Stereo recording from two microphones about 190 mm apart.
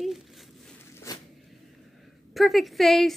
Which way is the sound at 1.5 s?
Centre (ahead or behind).